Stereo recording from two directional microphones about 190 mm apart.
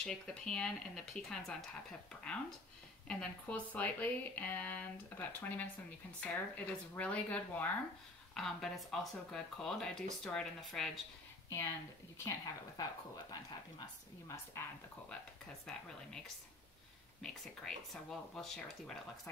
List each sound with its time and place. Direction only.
0.0 s speech: 5° left (ahead or behind)
12.2 s speech: 15° left (ahead or behind)
15.7 s speech: 5° left (ahead or behind)
17.2 s speech: 5° left (ahead or behind)